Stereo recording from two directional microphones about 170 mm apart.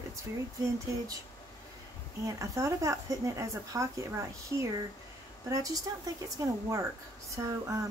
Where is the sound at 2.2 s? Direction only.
20° right (ahead or behind).